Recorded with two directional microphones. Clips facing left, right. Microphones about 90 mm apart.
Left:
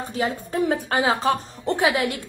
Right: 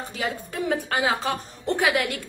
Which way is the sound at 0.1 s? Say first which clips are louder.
Left 6 dB; 30° left (ahead or behind).